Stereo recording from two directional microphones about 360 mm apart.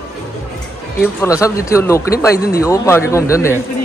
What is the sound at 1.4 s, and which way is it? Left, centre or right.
Speech, centre.